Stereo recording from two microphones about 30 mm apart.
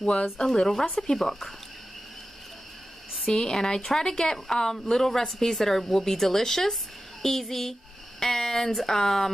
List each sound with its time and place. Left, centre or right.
0.0 s speech: left
0.6 s a woman's voice: centre
3.3 s a woman's voice: centre